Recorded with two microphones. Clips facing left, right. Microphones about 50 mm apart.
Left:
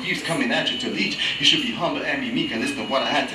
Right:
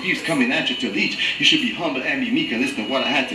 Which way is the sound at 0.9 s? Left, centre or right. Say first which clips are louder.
Right 2 dB; right.